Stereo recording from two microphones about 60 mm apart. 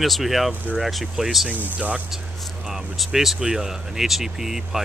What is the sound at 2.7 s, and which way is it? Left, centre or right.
Speech, centre.